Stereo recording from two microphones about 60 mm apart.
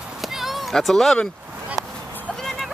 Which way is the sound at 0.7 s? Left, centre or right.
Centre.